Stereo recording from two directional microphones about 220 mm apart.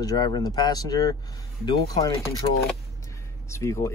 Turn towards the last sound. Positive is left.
turn(degrees=15)  # may be behind; listen again after turning